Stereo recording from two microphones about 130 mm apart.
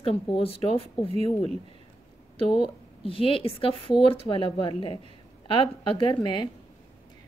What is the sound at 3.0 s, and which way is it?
A woman's voice, 45° left (ahead or behind).